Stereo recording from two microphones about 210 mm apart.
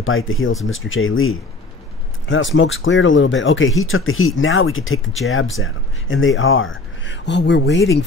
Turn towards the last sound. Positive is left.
turn(degrees=55)  # may be behind; listen again after turning